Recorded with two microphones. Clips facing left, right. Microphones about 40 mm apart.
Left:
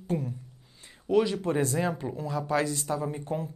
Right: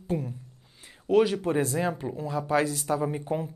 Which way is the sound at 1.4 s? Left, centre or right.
Centre.